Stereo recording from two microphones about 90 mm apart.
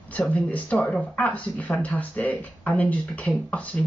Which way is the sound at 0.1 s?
15° left (ahead or behind).